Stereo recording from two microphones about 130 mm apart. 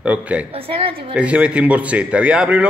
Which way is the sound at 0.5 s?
45° right (ahead or behind).